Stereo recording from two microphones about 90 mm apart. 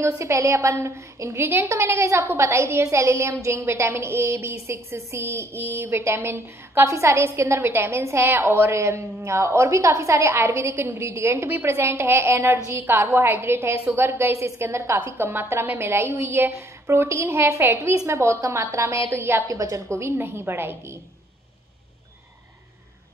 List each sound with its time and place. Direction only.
0.0 s a woman's voice: 35° right (ahead or behind)